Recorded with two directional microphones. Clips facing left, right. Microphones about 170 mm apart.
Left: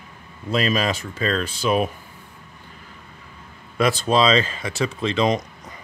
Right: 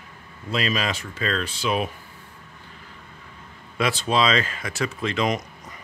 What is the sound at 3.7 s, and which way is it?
Speech, 45° left (ahead or behind).